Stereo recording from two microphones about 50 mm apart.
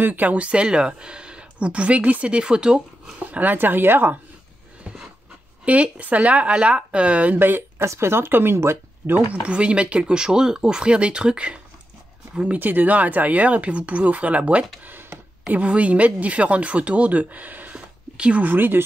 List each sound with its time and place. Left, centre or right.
0.0 s speech: right; by 2.8 s centre
3.3 s a sound: right
3.5 s speech: right
5.7 s speech: right
7.3 s speech: right
7.8 s speech: right
9.3 s speech: right
12.5 s speech: right
14.9 s a sound: right
15.5 s speech: right
17.7 s a sound: right
18.4 s speech: right